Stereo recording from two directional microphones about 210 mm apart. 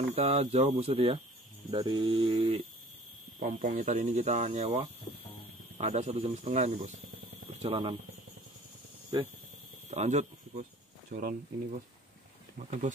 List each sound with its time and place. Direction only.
0.1 s speech: 30° right (ahead or behind)
3.3 s speech: 40° right (ahead or behind)
9.8 s speech: 30° right (ahead or behind)